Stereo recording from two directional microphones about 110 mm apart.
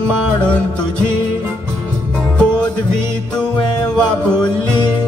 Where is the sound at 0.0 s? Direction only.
10° left (ahead or behind).